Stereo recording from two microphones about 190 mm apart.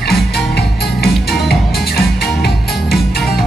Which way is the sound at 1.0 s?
55° left (ahead or behind).